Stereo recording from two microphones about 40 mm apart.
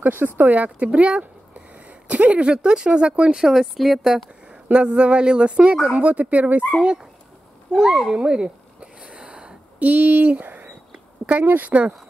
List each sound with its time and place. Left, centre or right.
0.0 s speech: right
0.9 s speech: right
3.4 s speech: centre
4.7 s speech: right
5.9 s speech: right
7.7 s speech: centre
9.1 s a sound: right
9.8 s speech: right